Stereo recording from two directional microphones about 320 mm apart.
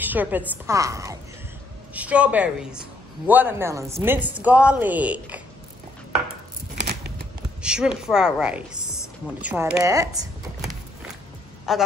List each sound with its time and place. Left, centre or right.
0.0 s a woman's voice: centre
6.7 s scissors: right
7.6 s a woman's voice: centre